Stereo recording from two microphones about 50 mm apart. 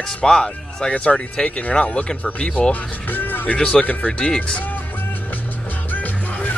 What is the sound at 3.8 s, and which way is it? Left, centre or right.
Speech, left.